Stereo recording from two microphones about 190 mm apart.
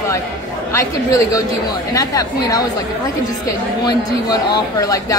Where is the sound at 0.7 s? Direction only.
15° left (ahead or behind).